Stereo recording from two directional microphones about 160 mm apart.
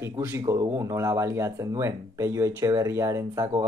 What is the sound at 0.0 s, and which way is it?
Speech, 15° right (ahead or behind).